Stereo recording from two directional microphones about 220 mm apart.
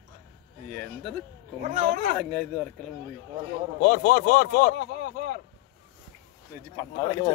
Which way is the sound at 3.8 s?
40° left (ahead or behind).